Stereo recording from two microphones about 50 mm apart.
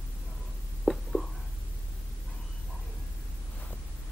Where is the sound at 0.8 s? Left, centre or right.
Centre.